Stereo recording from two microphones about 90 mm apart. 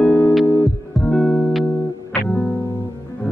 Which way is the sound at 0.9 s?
5° left (ahead or behind).